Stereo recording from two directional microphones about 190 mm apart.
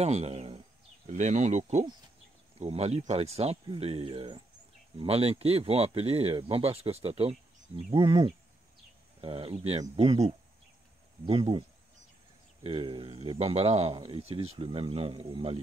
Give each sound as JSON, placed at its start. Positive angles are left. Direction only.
{"t": 0.0, "sound": "speech", "side_deg": -35}
{"t": 11.2, "sound": "speech", "side_deg": -30}
{"t": 12.6, "sound": "speech", "side_deg": -25}